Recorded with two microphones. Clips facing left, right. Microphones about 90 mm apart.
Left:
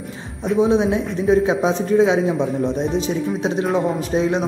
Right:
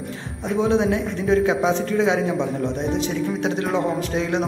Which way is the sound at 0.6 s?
20° left (ahead or behind).